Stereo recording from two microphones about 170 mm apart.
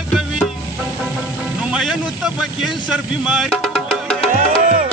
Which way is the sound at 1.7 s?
5° right (ahead or behind).